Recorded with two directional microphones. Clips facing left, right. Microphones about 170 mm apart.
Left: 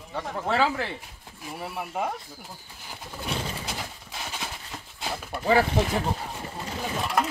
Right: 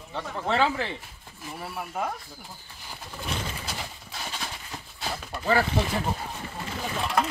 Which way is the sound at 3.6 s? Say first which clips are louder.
Left 1 dB; 15° left (ahead or behind).